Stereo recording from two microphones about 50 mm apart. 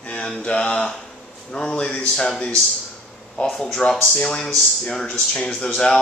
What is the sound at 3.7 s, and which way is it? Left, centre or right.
Speech, centre.